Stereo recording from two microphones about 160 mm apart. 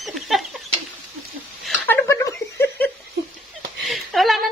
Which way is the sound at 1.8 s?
15° left (ahead or behind).